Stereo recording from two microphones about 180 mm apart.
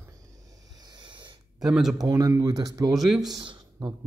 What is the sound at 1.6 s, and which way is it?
Speech, centre (ahead or behind).